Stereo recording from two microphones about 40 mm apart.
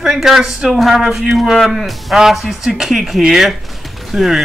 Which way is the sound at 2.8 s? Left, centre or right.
Centre.